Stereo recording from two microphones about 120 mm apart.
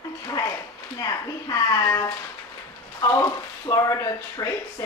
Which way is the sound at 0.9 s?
30° left (ahead or behind).